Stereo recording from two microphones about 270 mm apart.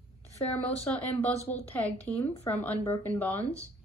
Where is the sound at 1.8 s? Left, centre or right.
Centre.